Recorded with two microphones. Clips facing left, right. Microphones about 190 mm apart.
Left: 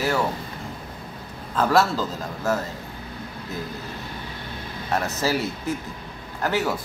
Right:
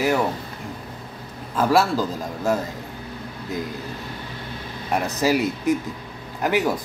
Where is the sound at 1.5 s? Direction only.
10° right (ahead or behind).